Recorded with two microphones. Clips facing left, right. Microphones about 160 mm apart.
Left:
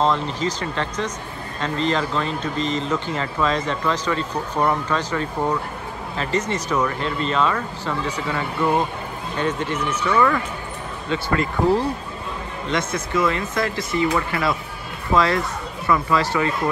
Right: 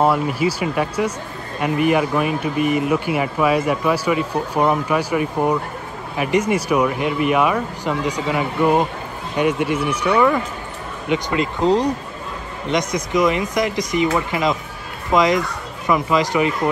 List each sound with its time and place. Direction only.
0.0 s speech: 10° right (ahead or behind)